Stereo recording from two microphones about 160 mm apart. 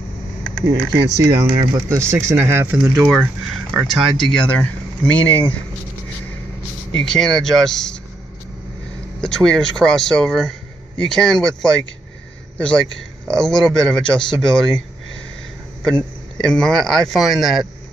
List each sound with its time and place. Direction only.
0.9 s speech: 90° right
1.2 s speech: 20° right (ahead or behind); by 5.5 s 10° left (ahead or behind)
7.1 s speech: 5° left (ahead or behind)
9.2 s a man's voice: 5° left (ahead or behind)
15.8 s speech: 5° left (ahead or behind)